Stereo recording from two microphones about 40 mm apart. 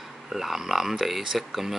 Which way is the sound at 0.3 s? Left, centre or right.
Centre.